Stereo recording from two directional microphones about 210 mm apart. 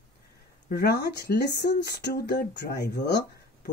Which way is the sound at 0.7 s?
50° left (ahead or behind).